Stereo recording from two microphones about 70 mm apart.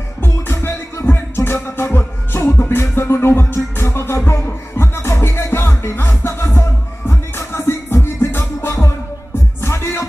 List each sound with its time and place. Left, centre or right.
0.2 s music: left